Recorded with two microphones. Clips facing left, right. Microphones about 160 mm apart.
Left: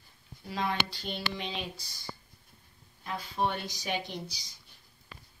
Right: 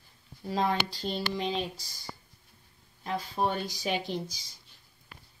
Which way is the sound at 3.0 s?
40° right (ahead or behind).